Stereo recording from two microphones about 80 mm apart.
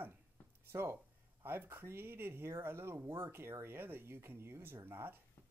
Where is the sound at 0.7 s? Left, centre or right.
Right.